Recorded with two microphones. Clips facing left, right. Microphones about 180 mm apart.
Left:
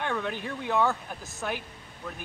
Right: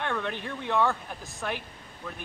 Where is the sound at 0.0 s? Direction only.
5° left (ahead or behind).